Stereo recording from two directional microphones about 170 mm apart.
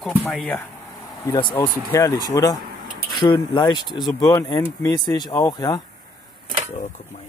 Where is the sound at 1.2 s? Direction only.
25° left (ahead or behind).